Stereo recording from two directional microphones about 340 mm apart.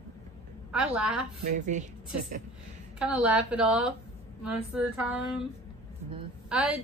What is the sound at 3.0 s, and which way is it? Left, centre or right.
A woman's voice, centre.